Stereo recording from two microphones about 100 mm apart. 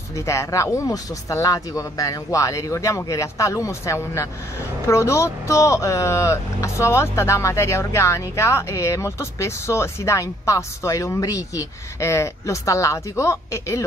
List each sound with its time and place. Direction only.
0.1 s speech: 30° left (ahead or behind)